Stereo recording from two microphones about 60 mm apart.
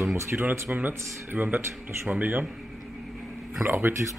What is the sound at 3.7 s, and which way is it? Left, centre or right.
Speech, right.